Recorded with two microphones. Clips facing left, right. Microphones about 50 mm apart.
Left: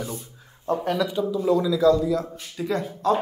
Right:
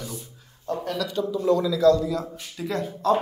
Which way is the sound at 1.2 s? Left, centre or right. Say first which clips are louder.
Right 2 dB; centre.